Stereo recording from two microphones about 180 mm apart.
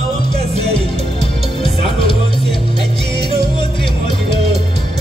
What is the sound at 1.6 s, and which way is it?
Music, 30° left (ahead or behind).